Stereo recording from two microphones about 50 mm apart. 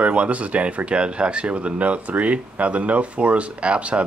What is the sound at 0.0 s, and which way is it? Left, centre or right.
Speech, right.